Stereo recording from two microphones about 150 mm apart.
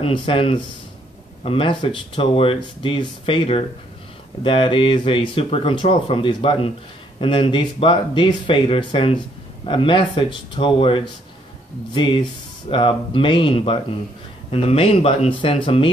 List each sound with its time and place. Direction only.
0.0 s speech: 40° left (ahead or behind)